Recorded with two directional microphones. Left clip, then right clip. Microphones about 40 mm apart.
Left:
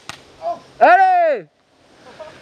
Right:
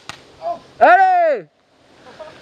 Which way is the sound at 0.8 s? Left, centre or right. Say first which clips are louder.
Even; right.